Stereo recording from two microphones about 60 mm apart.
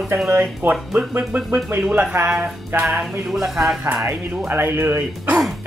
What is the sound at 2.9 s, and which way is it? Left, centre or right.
Speech, centre.